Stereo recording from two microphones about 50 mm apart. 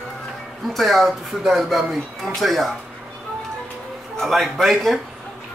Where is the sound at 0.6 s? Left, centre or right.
Centre.